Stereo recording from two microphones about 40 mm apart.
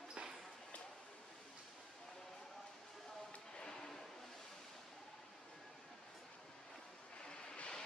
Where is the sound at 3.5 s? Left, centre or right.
Centre.